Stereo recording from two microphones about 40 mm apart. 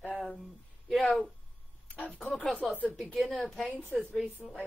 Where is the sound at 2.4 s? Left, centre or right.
Left.